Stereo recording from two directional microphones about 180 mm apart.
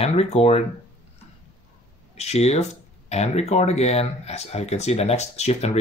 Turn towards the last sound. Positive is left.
turn(degrees=35)  # may be behind; listen again after turning